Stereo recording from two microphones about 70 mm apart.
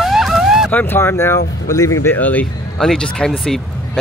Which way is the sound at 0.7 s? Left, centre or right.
Left.